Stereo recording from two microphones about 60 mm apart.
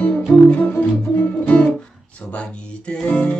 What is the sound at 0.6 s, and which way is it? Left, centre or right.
Music, left.